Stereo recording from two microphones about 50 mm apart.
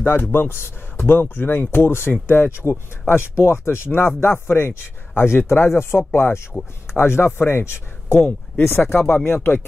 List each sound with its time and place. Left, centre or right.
0.0 s speech: left
3.3 s speech: left
9.2 s speech: left